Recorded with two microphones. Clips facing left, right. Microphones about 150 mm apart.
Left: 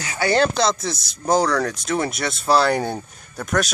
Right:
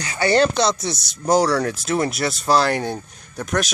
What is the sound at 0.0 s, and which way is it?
Speech, 5° left (ahead or behind).